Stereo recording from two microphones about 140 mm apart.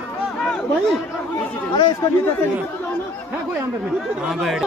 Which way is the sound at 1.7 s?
35° left (ahead or behind).